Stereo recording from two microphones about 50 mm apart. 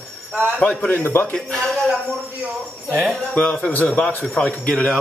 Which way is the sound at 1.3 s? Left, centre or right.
Centre.